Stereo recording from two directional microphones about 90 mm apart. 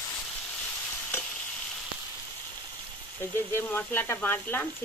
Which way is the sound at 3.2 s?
25° left (ahead or behind).